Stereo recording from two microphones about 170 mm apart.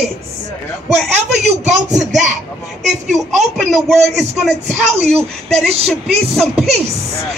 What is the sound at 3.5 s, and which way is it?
A woman's voice, centre (ahead or behind).